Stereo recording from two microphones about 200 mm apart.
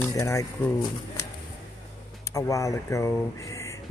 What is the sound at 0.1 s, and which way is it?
Speech, 15° left (ahead or behind).